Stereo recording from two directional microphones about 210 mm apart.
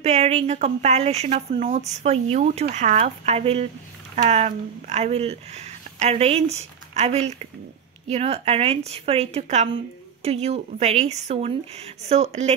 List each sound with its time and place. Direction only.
0.0 s speech: 30° right (ahead or behind)